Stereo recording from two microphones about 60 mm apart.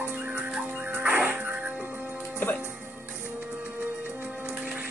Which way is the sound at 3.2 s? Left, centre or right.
Right.